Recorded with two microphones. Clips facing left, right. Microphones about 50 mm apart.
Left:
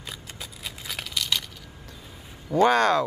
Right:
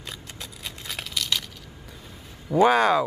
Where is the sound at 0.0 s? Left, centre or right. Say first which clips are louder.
Even; centre.